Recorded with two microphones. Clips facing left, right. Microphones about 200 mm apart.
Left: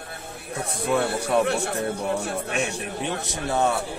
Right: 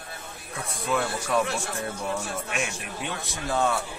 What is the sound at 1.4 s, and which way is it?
Speech, 60° left (ahead or behind).